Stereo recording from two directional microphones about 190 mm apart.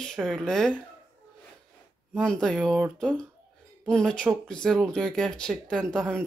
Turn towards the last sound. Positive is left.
turn(degrees=5)  # may be behind; listen again after turning